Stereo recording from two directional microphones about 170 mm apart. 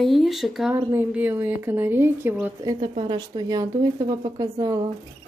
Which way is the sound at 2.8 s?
30° right (ahead or behind).